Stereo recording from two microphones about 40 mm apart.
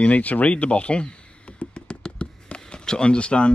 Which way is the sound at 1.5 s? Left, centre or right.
Left.